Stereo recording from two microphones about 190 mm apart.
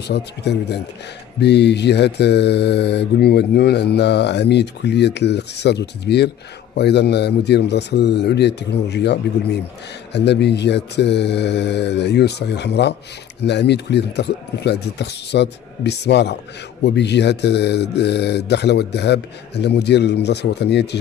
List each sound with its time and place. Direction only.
0.1 s mantra: 60° left (ahead or behind)